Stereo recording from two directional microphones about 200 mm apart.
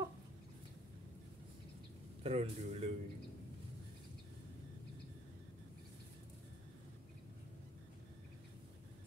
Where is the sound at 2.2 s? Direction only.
30° right (ahead or behind).